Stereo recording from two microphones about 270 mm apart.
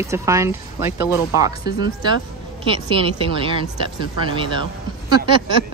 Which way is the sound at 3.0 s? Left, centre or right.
Centre.